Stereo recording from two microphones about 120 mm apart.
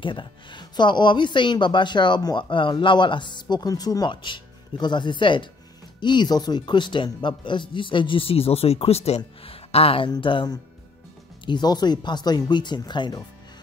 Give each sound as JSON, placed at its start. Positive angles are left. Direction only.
{"t": 0.0, "sound": "speech", "side_deg": 40}